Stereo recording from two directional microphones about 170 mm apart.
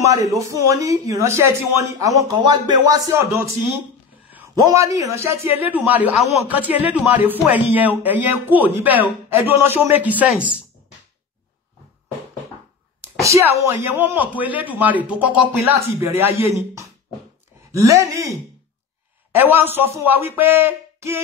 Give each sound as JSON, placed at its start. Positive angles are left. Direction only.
{"t": 0.1, "sound": "a man's voice", "side_deg": -20}
{"t": 13.2, "sound": "a man's voice", "side_deg": -15}
{"t": 17.6, "sound": "speech", "side_deg": -20}
{"t": 19.3, "sound": "a man's voice", "side_deg": -10}